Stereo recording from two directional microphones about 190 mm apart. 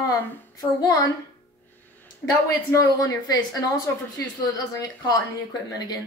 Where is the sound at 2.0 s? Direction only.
15° left (ahead or behind).